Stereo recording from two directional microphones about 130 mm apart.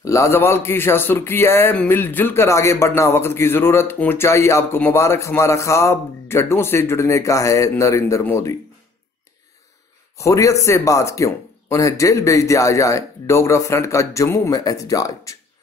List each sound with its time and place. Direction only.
0.0 s speech: 25° left (ahead or behind)
10.1 s speech: 25° left (ahead or behind)